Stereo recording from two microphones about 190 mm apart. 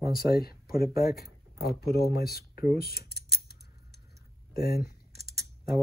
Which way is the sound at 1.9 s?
Centre (ahead or behind).